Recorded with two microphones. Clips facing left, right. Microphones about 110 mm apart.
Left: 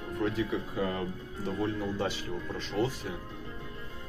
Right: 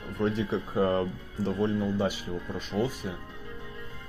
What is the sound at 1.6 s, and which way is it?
Speech, 25° right (ahead or behind).